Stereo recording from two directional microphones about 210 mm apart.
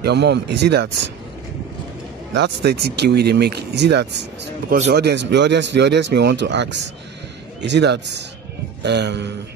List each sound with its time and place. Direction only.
0.0 s speech: 55° right (ahead or behind)
2.3 s speech: 55° right (ahead or behind)